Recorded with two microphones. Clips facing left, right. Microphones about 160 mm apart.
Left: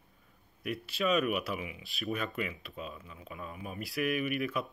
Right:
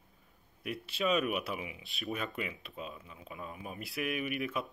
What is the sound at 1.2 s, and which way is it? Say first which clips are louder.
Speech: left 2 dB; 25° right (ahead or behind).